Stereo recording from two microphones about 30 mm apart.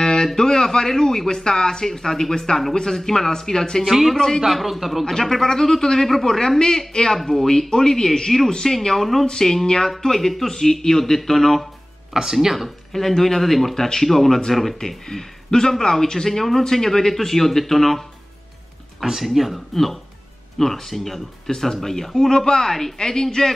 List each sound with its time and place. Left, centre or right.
0.0 s a sound: left
0.4 s speech: centre
3.8 s a man's voice: centre
5.0 s speech: centre
6.9 s speech: left
7.2 s speech: centre
8.7 s speech: centre
9.2 s speech: left
12.1 s speech: centre
12.9 s speech: centre
19.0 s speech: centre
19.7 s speech: centre
22.9 s speech: left